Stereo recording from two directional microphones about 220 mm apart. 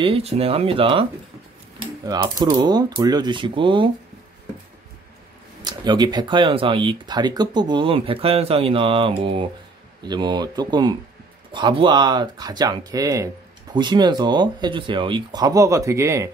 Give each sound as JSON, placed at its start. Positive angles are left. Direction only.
{"t": 0.0, "sound": "speech", "side_deg": -25}
{"t": 5.6, "sound": "speech", "side_deg": -20}